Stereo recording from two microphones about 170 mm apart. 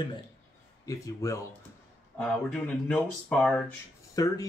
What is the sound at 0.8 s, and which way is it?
Speech, 20° left (ahead or behind).